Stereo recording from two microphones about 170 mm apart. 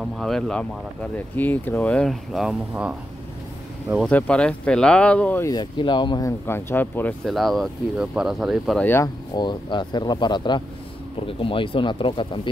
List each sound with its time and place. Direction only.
0.0 s speech: centre (ahead or behind)
4.1 s speech: 5° left (ahead or behind)
5.5 s speech: 25° left (ahead or behind); by 7.2 s 10° left (ahead or behind)
7.2 s speech: centre (ahead or behind)
8.8 s speech: 15° left (ahead or behind)
9.3 s speech: 25° left (ahead or behind)